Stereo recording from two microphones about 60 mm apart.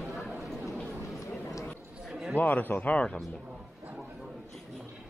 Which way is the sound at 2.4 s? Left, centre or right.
Left.